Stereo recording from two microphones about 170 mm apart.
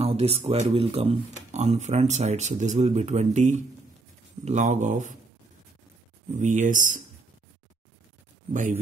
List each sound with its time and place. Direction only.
0.0 s speech: 35° right (ahead or behind)
6.3 s speech: 45° right (ahead or behind)